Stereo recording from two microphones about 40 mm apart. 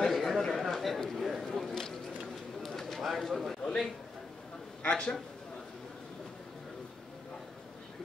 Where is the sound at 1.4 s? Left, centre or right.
Centre.